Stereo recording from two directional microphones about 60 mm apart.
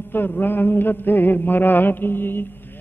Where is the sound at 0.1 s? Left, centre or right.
Left.